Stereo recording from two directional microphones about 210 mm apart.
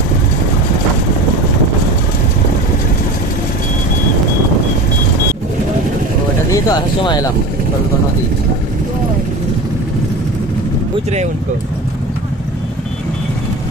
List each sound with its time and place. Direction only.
6.5 s speech: 20° left (ahead or behind)